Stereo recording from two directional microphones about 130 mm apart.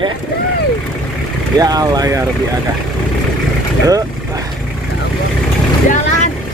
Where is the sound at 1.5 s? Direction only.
30° right (ahead or behind).